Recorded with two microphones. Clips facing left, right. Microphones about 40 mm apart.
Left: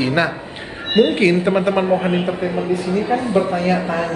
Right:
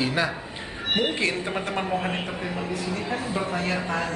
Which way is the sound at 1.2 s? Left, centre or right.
Left.